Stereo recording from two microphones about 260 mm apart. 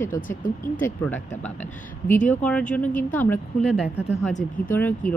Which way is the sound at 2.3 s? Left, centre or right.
Centre.